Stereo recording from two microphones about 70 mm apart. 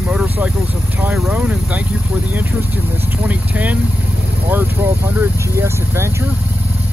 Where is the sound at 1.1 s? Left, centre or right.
Centre.